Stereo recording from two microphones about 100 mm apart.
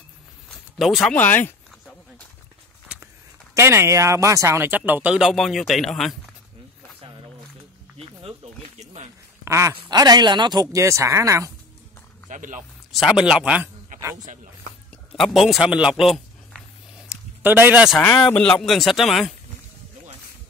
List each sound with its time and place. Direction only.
0.7 s speech: centre (ahead or behind)
1.0 s speech: 20° left (ahead or behind)
3.5 s speech: 25° right (ahead or behind)
5.2 s a man's voice: centre (ahead or behind)
8.0 s music: 75° right (ahead or behind)
9.4 s a sound: 30° right (ahead or behind)
9.8 s speech: 45° right (ahead or behind)
12.9 s speech: 5° right (ahead or behind)
15.1 s a man's voice: centre (ahead or behind)
17.1 s a sound: 20° right (ahead or behind)
18.3 s speech: 15° left (ahead or behind)
18.6 s a man's voice: centre (ahead or behind)